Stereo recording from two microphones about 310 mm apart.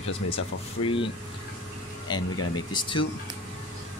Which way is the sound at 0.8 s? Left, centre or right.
Centre.